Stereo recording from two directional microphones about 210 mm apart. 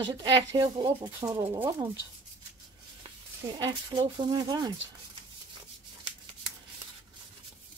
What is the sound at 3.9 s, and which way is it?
Speech, 20° right (ahead or behind).